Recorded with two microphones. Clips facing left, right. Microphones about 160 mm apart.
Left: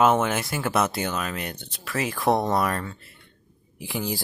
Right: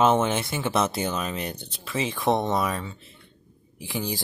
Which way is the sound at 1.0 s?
30° right (ahead or behind).